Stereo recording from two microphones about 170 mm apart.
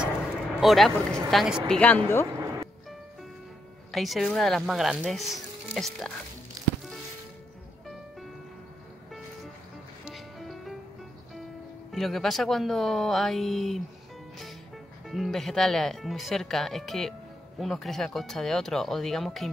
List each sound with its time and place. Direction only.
0.0 s a sound: centre (ahead or behind)
1.3 s speech: centre (ahead or behind)
2.3 s music: 20° right (ahead or behind)
3.9 s speech: centre (ahead or behind)
10.0 s music: centre (ahead or behind)
11.9 s speech: centre (ahead or behind)
15.0 s speech: centre (ahead or behind)